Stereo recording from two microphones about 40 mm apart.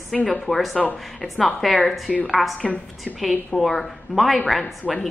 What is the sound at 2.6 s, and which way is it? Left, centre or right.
Speech, left.